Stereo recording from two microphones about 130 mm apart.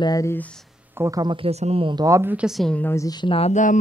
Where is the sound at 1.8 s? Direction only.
30° right (ahead or behind).